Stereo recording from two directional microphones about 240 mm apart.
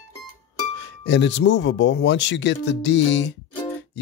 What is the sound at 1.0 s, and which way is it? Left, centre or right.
Speech, left.